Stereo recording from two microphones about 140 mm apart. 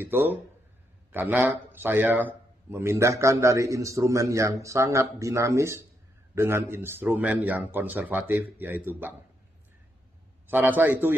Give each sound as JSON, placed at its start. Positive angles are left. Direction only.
{"t": 0.0, "sound": "a man's voice", "side_deg": -15}
{"t": 10.5, "sound": "speech", "side_deg": -15}